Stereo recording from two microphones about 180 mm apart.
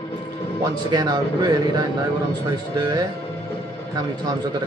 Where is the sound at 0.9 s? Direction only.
25° right (ahead or behind).